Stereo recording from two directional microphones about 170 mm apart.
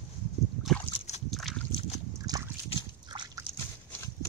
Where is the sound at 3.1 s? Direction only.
25° right (ahead or behind).